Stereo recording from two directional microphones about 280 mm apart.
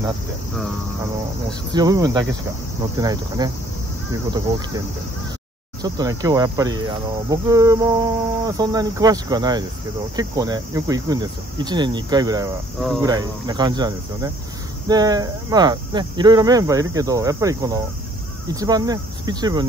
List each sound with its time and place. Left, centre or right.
1.7 s speech: centre